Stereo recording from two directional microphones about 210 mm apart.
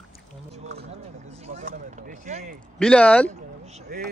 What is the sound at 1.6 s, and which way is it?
Speech, 35° right (ahead or behind).